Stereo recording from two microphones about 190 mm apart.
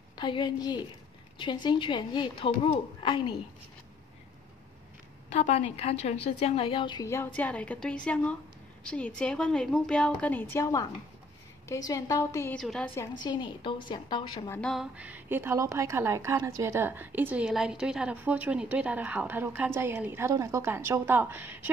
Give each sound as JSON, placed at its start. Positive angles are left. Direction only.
{"t": 0.2, "sound": "a woman's voice", "side_deg": 25}
{"t": 5.3, "sound": "a woman's voice", "side_deg": 35}
{"t": 12.5, "sound": "a woman's voice", "side_deg": 5}
{"t": 13.2, "sound": "a woman's voice", "side_deg": 25}
{"t": 14.6, "sound": "a woman's voice", "side_deg": 0}